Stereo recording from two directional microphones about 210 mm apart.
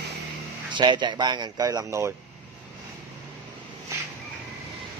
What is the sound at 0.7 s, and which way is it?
Speech, 20° right (ahead or behind).